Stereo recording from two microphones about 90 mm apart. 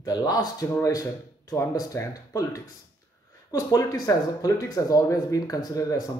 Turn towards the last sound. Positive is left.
turn(degrees=40)  # may be behind; listen again after turning